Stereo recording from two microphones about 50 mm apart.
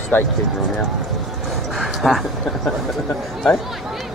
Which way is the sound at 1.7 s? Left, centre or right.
Centre.